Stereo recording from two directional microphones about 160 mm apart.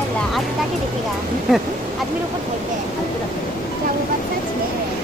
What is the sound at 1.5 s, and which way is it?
Speech, centre (ahead or behind).